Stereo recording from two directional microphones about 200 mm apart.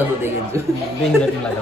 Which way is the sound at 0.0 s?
10° right (ahead or behind).